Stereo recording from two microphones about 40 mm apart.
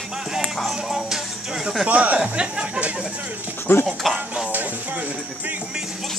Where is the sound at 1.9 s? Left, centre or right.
Right.